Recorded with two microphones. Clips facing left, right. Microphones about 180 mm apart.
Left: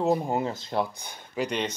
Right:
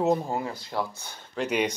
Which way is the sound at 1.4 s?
10° right (ahead or behind).